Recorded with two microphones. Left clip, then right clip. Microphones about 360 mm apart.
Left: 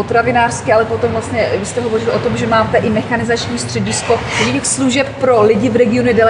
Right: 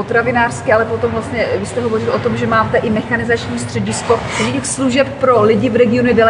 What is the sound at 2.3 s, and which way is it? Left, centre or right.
A woman's voice, centre.